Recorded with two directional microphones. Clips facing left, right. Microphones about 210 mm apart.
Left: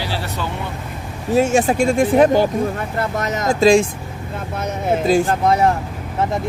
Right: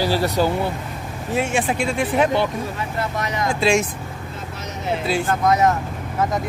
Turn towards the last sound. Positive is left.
turn(degrees=30)  # may be behind; listen again after turning